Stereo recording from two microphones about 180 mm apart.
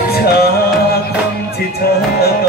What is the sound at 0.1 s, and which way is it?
Music, 60° left (ahead or behind).